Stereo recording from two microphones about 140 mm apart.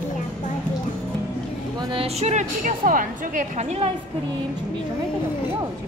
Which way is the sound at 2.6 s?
75° right (ahead or behind).